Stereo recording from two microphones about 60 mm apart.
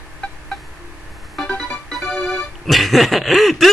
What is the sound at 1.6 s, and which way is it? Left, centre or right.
Music, centre.